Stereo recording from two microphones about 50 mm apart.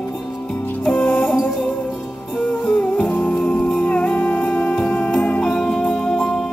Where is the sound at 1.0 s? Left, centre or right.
Left.